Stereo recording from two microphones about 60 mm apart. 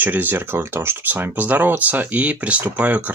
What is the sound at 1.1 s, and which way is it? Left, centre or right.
Speech, right.